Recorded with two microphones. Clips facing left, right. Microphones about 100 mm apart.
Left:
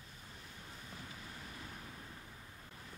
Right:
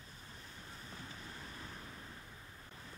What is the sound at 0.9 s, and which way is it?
Waves, 35° right (ahead or behind).